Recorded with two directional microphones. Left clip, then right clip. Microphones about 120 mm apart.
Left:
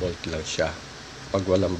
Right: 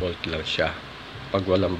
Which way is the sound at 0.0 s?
15° left (ahead or behind).